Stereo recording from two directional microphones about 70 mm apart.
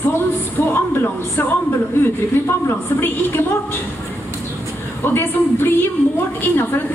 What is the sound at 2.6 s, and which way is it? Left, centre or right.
Speech, left.